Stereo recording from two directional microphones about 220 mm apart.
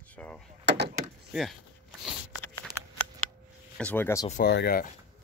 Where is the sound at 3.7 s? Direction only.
5° left (ahead or behind).